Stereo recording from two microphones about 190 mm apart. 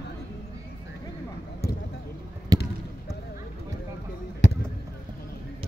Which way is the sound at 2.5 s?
20° right (ahead or behind).